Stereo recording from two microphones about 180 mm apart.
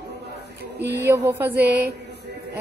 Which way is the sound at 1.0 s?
10° right (ahead or behind).